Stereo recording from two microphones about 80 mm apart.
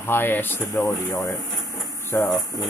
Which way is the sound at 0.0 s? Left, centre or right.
Left.